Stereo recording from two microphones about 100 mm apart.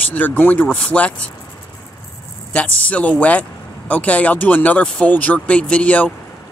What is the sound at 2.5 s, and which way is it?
Speech, 15° left (ahead or behind).